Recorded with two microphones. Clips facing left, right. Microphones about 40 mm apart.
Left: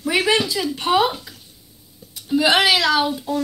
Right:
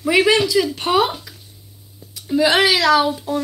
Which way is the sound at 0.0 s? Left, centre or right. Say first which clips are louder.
Right 4 dB; right.